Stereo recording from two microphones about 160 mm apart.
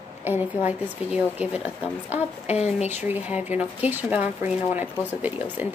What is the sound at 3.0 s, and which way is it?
A woman's voice, 10° right (ahead or behind).